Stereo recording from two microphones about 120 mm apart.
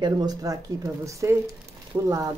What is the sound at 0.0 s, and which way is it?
Speech, 35° right (ahead or behind).